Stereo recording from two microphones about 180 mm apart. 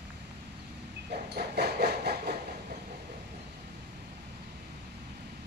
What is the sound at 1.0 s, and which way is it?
Dog, 65° right (ahead or behind).